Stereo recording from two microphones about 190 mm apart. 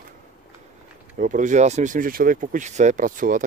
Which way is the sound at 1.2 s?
40° right (ahead or behind).